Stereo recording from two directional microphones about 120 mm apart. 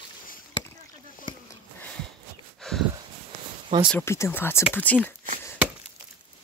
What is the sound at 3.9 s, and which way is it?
Speech, 20° left (ahead or behind).